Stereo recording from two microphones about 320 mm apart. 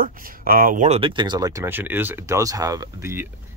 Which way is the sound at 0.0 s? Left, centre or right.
Right.